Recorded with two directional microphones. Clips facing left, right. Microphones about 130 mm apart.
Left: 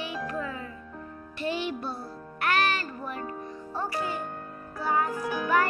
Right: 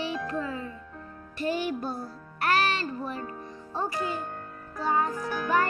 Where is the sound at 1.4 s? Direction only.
45° right (ahead or behind); by 4.1 s 20° right (ahead or behind).